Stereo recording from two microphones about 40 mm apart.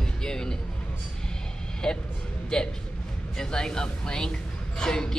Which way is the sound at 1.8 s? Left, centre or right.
Centre.